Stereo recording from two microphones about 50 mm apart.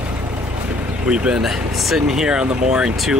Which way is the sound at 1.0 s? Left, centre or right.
Centre.